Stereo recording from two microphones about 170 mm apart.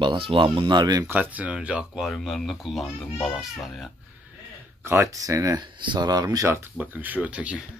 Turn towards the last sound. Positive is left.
turn(degrees=-10)  # may be behind; listen again after turning